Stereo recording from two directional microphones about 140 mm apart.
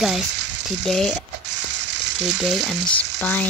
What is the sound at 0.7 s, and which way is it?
Speech, centre (ahead or behind).